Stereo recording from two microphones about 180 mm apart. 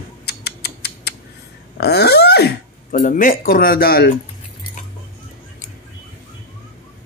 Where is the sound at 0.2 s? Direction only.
65° left (ahead or behind).